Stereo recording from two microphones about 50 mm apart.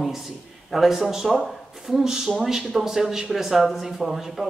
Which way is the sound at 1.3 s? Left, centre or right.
Centre.